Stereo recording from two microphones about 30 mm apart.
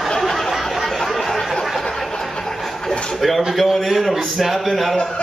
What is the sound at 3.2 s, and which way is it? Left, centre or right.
A man's voice, centre.